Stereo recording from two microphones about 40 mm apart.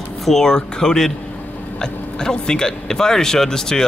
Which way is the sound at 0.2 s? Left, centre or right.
Centre.